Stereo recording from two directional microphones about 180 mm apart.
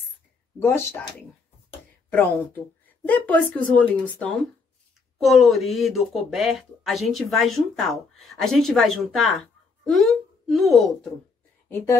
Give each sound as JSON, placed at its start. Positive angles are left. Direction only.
{"t": 0.6, "sound": "speech", "side_deg": 10}
{"t": 2.0, "sound": "speech", "side_deg": 10}
{"t": 11.7, "sound": "speech", "side_deg": 15}